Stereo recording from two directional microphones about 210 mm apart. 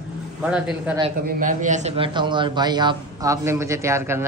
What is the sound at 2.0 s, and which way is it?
Speech, 20° right (ahead or behind).